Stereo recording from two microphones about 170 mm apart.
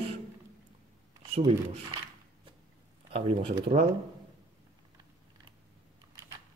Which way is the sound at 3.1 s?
35° right (ahead or behind).